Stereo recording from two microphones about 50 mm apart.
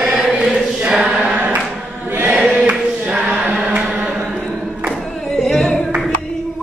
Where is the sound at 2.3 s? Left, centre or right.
Right.